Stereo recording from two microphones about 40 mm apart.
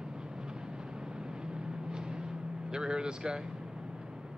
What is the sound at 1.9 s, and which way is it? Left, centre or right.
Timpani, right.